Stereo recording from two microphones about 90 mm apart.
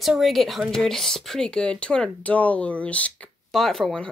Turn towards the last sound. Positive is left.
turn(degrees=5)  # may be behind; listen again after turning